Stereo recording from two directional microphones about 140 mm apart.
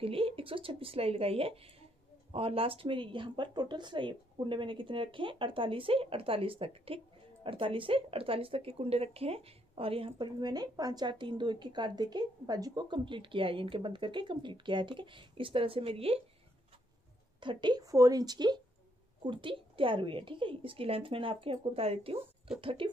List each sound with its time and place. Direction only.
0.0 s speech: 40° right (ahead or behind)
17.4 s a woman's voice: 35° right (ahead or behind)